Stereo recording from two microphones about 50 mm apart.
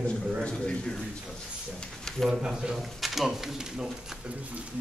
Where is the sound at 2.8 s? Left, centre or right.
Centre.